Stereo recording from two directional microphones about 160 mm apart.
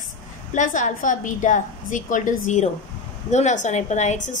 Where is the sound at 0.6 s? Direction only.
50° left (ahead or behind).